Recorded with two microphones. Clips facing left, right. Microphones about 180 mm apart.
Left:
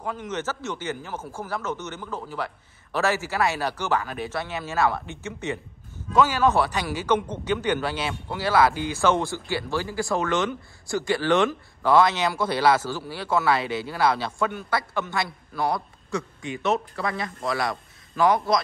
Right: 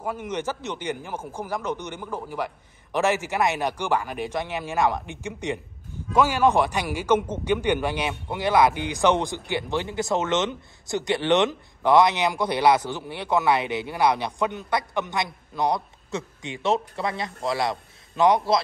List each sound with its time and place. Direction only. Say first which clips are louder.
0.0 s speech: right 1 dB; 10° right (ahead or behind)